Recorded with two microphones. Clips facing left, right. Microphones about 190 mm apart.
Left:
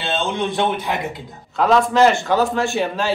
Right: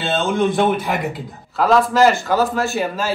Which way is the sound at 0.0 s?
Centre (ahead or behind).